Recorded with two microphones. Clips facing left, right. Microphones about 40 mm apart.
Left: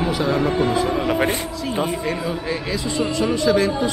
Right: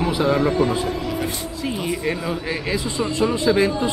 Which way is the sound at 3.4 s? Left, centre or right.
Centre.